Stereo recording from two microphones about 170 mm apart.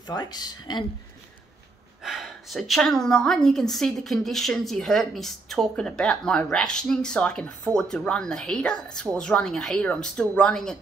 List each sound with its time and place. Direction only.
0.1 s speech: 25° left (ahead or behind)
2.0 s a woman's voice: centre (ahead or behind)